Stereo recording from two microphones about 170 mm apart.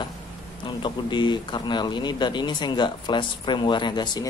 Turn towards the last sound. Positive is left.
turn(degrees=25)  # may be behind; listen again after turning